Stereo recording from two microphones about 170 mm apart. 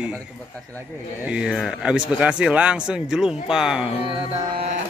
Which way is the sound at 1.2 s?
5° right (ahead or behind).